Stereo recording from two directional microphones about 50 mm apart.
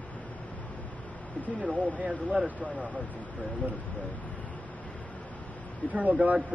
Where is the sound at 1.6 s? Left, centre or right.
Right.